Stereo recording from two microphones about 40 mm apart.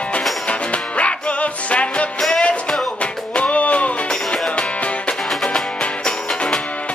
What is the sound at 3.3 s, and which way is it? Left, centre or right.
Music, left.